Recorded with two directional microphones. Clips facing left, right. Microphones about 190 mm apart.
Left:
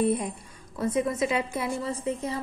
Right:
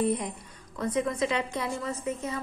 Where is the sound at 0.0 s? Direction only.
25° left (ahead or behind).